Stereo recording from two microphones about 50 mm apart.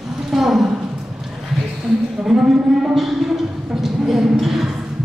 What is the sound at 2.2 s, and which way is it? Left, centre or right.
Cattle, centre.